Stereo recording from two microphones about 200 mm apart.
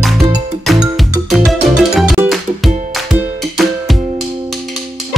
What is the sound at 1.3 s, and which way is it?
Music, centre (ahead or behind).